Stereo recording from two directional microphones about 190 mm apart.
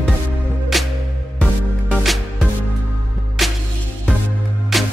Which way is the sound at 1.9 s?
Centre (ahead or behind).